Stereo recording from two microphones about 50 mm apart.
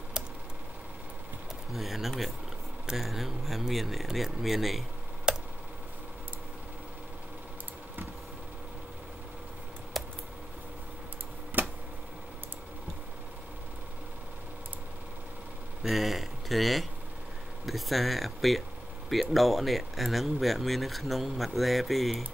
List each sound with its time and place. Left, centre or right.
1.7 s speech: centre
5.3 s tick: centre
9.9 s typing: centre
11.6 s a sound: right
15.8 s speech: centre